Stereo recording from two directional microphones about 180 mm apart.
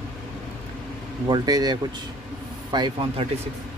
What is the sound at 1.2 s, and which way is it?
Speech, 25° right (ahead or behind).